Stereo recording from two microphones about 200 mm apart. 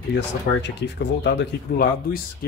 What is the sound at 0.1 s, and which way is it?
Speech, 60° left (ahead or behind).